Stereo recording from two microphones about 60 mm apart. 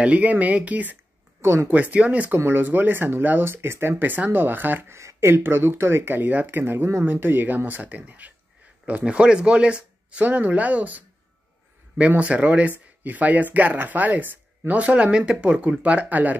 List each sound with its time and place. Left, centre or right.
0.0 s speech: right
1.4 s speech: right
1.7 s speech: right
2.3 s speech: right
2.6 s speech: right
4.9 s speech: right
12.2 s speech: right